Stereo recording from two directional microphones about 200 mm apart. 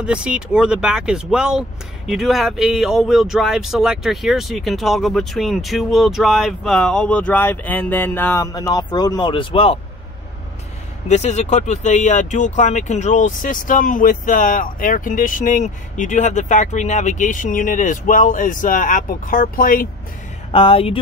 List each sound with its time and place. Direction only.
0.0 s speech: 5° right (ahead or behind); by 9.8 s 25° left (ahead or behind)
11.1 s speech: 35° left (ahead or behind)
20.5 s speech: 30° left (ahead or behind)